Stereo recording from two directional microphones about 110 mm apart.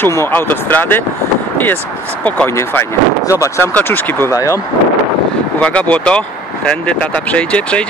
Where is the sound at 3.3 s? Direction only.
30° left (ahead or behind).